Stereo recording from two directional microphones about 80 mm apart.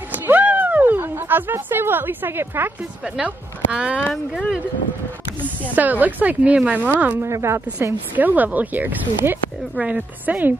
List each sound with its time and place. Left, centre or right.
0.1 s a sound: right
3.2 s speech: centre
5.8 s speech: right
7.2 s a woman's voice: right
8.2 s speech: right
9.8 s speech: centre